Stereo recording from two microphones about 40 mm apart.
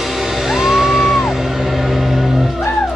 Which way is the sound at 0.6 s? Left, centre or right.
Centre.